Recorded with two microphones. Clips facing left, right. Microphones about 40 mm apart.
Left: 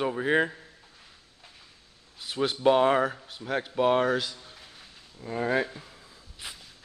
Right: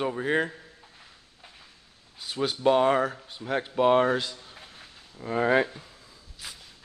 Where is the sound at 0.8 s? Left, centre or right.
Centre.